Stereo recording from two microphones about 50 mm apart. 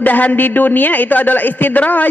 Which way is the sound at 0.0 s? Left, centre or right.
Left.